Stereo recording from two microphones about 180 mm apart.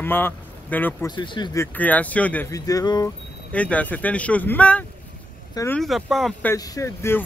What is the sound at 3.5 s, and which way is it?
A man's voice, 5° left (ahead or behind).